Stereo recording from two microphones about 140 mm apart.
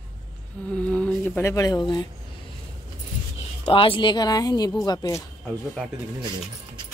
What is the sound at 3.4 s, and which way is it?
Speech, 40° left (ahead or behind).